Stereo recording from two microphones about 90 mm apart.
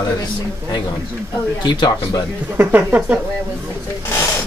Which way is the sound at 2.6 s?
20° right (ahead or behind).